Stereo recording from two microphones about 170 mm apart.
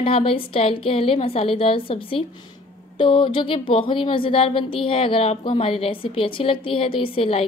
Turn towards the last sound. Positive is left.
turn(degrees=35)  # may be behind; listen again after turning